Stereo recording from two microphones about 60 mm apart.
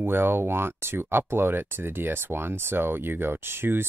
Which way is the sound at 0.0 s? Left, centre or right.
Right.